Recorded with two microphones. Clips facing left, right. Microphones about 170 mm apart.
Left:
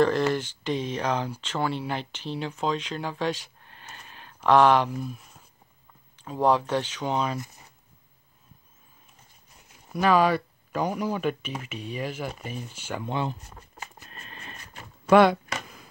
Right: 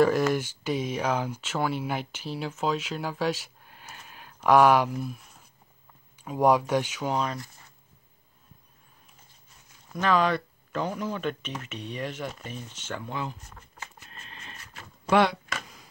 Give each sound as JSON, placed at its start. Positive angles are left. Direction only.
{"t": 0.3, "sound": "speech", "side_deg": -10}
{"t": 6.1, "sound": "speech", "side_deg": -10}
{"t": 9.8, "sound": "speech", "side_deg": 10}
{"t": 13.0, "sound": "speech", "side_deg": 25}
{"t": 14.1, "sound": "a sound", "side_deg": 55}
{"t": 15.0, "sound": "speech", "side_deg": 50}